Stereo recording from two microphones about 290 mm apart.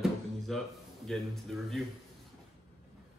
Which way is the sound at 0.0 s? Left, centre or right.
Centre.